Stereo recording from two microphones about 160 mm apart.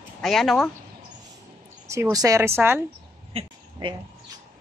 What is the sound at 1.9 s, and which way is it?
Speech, 20° right (ahead or behind).